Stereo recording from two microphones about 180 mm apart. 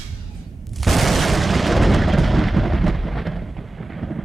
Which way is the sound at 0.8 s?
Centre (ahead or behind).